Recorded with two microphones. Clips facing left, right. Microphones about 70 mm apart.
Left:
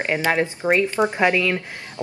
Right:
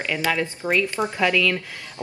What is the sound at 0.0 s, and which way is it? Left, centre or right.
A woman's voice, left.